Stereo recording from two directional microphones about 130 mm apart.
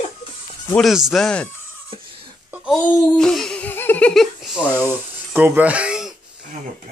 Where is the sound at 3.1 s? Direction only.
5° left (ahead or behind).